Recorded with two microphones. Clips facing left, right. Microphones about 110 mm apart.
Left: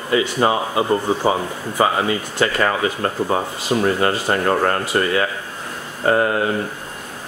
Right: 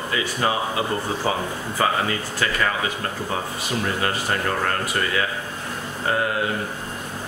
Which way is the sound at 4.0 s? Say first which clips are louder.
Left 6 dB; 35° left (ahead or behind).